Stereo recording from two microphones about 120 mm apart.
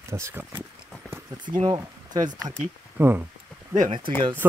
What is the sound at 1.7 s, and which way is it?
Speech, 35° right (ahead or behind).